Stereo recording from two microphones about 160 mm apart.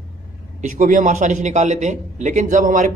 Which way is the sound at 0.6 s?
50° right (ahead or behind).